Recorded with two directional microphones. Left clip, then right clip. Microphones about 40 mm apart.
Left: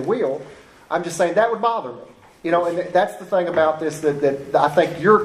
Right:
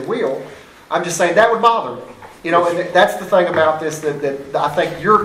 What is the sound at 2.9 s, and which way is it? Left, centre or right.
Speech, left.